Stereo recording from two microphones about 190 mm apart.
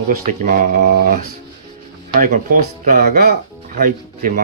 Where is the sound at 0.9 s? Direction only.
55° right (ahead or behind).